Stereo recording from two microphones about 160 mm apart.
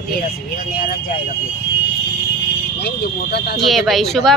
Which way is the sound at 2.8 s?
90° left.